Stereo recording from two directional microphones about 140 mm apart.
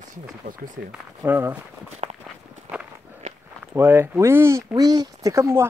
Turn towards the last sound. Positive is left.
turn(degrees=-20)  # may be behind; listen again after turning